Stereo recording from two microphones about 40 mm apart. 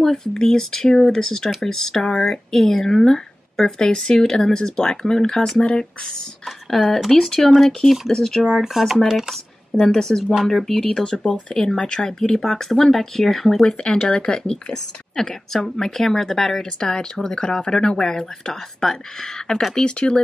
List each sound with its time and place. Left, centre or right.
0.0 s speech: centre
6.7 s speech: centre
8.5 s speech: centre
9.8 s speech: centre
10.2 s speech: centre
10.5 s speech: centre
13.8 s speech: centre